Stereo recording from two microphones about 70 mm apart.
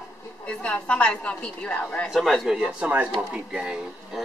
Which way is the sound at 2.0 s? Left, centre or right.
Centre.